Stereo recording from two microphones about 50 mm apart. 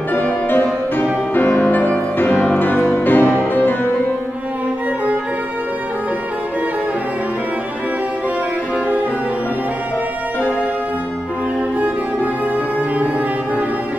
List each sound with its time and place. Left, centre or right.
0.1 s music: left